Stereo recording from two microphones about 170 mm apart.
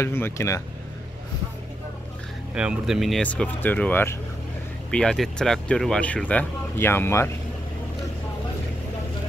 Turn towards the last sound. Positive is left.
turn(degrees=15)  # may be behind; listen again after turning